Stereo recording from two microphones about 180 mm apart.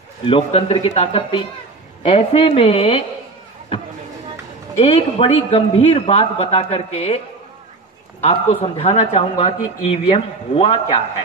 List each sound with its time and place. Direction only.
0.3 s a man's voice: 35° left (ahead or behind)
4.7 s a man's voice: 30° left (ahead or behind)
8.2 s a man's voice: 35° left (ahead or behind)